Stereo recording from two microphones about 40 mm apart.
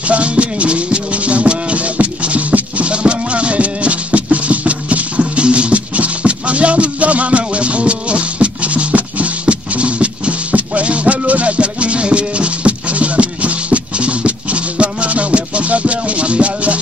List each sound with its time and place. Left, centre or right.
0.1 s music: right